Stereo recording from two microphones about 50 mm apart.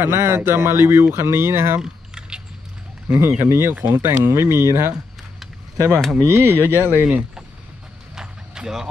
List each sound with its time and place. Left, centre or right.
0.0 s speech: right
1.8 s keys jangling: centre
3.2 s speech: right
5.9 s speech: centre
6.2 s speech: right
6.6 s speech: right
8.2 s a sound: centre